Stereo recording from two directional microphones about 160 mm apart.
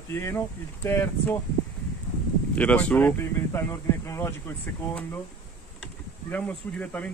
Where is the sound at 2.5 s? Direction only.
10° left (ahead or behind).